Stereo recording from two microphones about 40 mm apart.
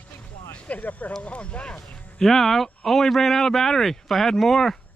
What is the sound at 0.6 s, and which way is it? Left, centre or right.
Speech, left.